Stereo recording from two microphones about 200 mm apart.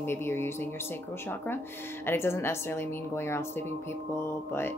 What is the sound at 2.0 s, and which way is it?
Speech, 10° left (ahead or behind).